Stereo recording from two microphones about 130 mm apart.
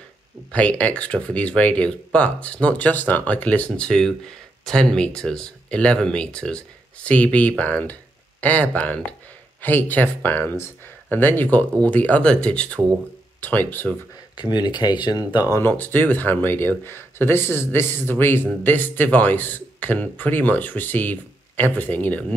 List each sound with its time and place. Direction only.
0.5 s speech: 10° left (ahead or behind)
14.3 s speech: 35° left (ahead or behind)
15.5 s speech: 15° left (ahead or behind)